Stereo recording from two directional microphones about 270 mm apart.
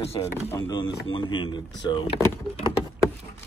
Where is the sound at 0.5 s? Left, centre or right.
Centre.